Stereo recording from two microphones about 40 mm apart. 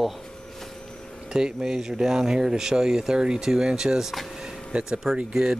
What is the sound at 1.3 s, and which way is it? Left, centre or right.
Speech, centre.